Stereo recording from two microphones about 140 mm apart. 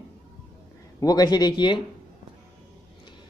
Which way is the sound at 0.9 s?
25° left (ahead or behind).